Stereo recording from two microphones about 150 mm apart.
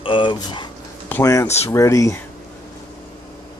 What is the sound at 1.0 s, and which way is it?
Speech, 15° left (ahead or behind).